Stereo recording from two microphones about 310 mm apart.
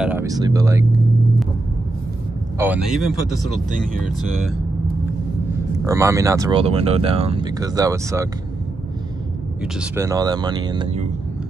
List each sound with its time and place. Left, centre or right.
0.0 s speech: centre
2.6 s speech: centre
5.9 s speech: centre
9.6 s speech: centre